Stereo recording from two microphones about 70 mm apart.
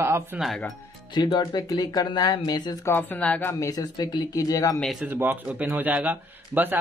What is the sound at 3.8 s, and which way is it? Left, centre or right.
Speech, left.